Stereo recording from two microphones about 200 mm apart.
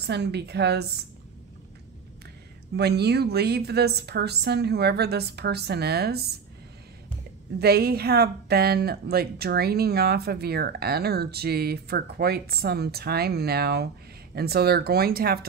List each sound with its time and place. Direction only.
0.0 s a woman's voice: 55° right (ahead or behind)
2.7 s speech: 55° right (ahead or behind)
7.5 s speech: 50° right (ahead or behind)